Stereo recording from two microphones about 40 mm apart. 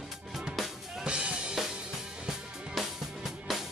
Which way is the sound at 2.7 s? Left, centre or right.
Centre.